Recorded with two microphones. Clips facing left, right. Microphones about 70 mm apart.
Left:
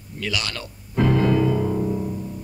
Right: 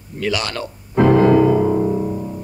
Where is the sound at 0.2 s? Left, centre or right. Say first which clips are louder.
Right 7 dB; right.